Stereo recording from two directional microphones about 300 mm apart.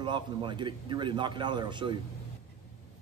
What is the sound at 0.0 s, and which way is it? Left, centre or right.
Speech, centre.